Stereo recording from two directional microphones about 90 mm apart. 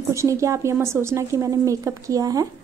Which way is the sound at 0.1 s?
35° right (ahead or behind).